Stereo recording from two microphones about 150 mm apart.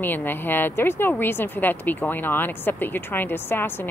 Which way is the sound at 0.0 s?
15° left (ahead or behind).